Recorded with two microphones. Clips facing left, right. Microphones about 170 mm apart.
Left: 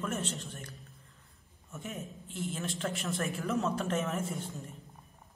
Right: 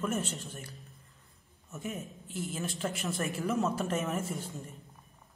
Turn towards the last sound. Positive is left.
turn(degrees=0)  # may be behind; listen again after turning